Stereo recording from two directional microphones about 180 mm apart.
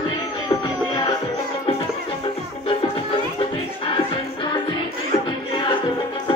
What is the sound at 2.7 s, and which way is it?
Music, 30° left (ahead or behind).